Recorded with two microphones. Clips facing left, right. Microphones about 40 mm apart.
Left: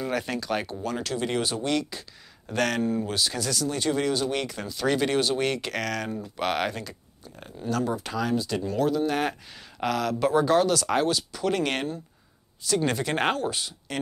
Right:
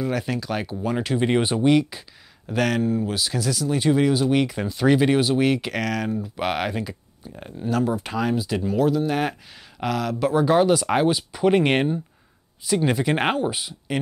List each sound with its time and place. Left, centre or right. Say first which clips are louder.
0.0 s speech: right 3 dB; centre
0.8 s speech: right 10 dB; centre
10.5 s speech: right 4 dB; centre
12.6 s speech: right 4 dB; centre